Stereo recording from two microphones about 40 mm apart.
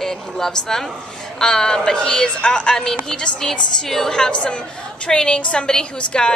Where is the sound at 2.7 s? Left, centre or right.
Centre.